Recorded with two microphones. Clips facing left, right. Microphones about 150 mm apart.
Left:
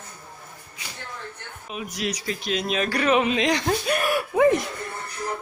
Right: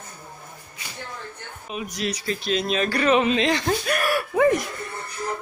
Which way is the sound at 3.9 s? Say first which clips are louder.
Even; 20° left (ahead or behind).